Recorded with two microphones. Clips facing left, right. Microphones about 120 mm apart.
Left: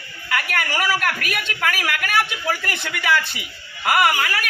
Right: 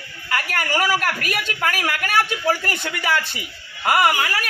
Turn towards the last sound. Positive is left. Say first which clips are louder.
# even
turn(degrees=-30)  # may be behind; listen again after turning